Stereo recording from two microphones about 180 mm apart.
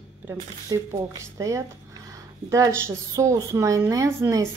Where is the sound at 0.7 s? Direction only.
20° right (ahead or behind).